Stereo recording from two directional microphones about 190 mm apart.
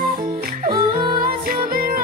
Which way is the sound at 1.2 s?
50° right (ahead or behind).